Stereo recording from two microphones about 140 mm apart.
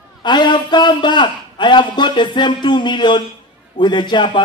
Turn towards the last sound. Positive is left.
turn(degrees=35)  # may be behind; listen again after turning